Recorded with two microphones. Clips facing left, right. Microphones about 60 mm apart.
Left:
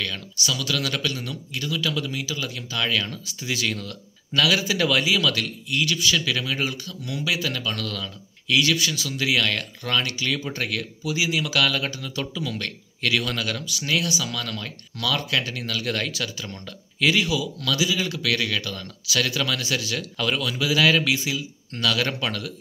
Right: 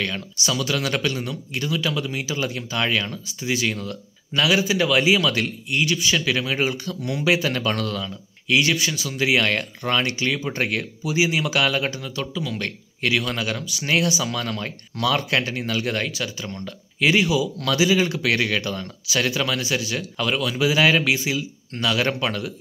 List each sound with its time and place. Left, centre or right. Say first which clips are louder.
0.0 s speech: right 3 dB; right
2.2 s speech: right 4 dB; right; by 5.0 s centre
5.0 s speech: right 3 dB; right
7.9 s speech: right 4 dB; right
10.5 s speech: right 4 dB; right
12.2 s speech: right 1 dB; centre
13.8 s speech: right 4 dB; right
16.1 s speech: right 2 dB; centre
17.6 s speech: right 7 dB; right
18.0 s speech: right 4 dB; right